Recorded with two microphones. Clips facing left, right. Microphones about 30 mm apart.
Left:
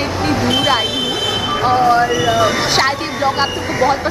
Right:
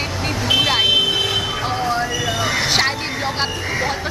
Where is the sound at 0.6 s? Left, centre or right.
Centre.